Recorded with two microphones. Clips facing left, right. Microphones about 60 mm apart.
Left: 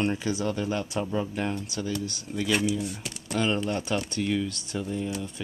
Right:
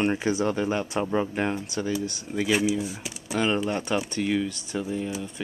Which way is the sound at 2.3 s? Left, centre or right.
Centre.